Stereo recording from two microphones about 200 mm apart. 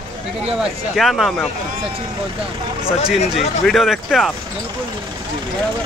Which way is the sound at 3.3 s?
Centre (ahead or behind).